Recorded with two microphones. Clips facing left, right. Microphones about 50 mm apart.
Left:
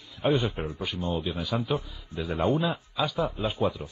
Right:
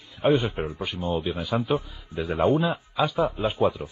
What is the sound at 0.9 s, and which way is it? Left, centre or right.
Speech, centre.